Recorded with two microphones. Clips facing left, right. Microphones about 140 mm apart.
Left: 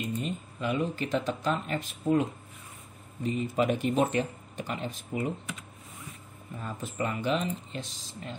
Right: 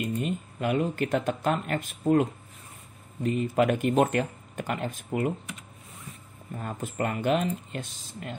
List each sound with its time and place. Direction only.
0.0 s speech: 55° right (ahead or behind)
3.3 s speech: 55° right (ahead or behind)
6.6 s speech: 50° right (ahead or behind)